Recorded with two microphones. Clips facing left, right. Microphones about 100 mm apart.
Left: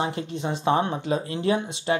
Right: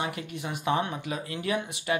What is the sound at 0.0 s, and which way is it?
Speech, 25° left (ahead or behind).